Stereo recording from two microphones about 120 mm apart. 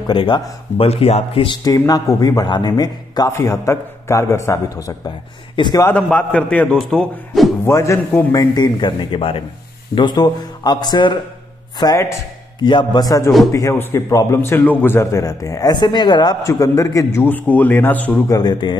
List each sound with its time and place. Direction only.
0.1 s speech: 45° left (ahead or behind)
1.6 s speech: 35° left (ahead or behind)
5.6 s a man's voice: 40° left (ahead or behind)
5.9 s a man's voice: 10° left (ahead or behind)
7.6 s speech: 25° left (ahead or behind)
8.3 s a man's voice: 35° left (ahead or behind)
11.8 s speech: 25° left (ahead or behind)
12.5 s a man's voice: 40° left (ahead or behind); by 18.2 s 15° left (ahead or behind)
18.3 s a man's voice: 35° left (ahead or behind)